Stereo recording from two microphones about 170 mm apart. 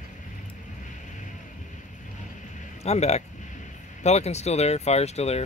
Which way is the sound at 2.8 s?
40° left (ahead or behind).